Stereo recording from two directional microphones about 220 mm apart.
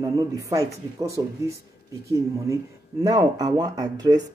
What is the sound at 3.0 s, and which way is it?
Speech, 15° right (ahead or behind).